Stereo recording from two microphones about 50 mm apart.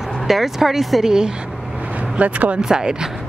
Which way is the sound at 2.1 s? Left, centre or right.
Right.